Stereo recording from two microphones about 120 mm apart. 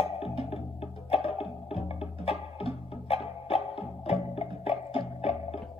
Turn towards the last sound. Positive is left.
turn(degrees=55)  # may be behind; listen again after turning